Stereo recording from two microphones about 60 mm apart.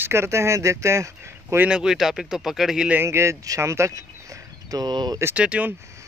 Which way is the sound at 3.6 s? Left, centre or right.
Right.